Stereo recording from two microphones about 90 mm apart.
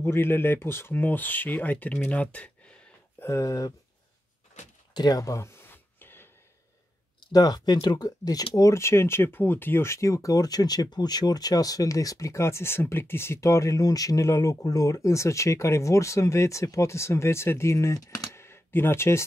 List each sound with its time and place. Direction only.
0.0 s speech: 25° left (ahead or behind)
3.2 s speech: 30° left (ahead or behind)
4.9 s a sound: 45° left (ahead or behind); by 6.2 s 25° left (ahead or behind)
7.3 s speech: 45° left (ahead or behind)
8.5 s speech: 35° left (ahead or behind)